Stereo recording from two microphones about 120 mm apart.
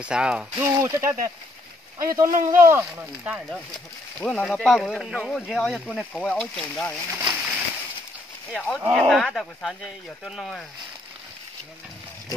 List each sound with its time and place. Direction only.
0.0 s speech: 10° right (ahead or behind)
0.6 s speech: 20° right (ahead or behind)
2.5 s speech: 20° right (ahead or behind)
4.2 s speech: 5° left (ahead or behind)
7.2 s a sound: 10° right (ahead or behind)
8.7 s speech: 10° right (ahead or behind)
9.1 s speech: 5° left (ahead or behind)